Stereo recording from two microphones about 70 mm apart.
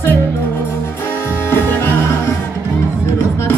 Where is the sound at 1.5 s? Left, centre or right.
Left.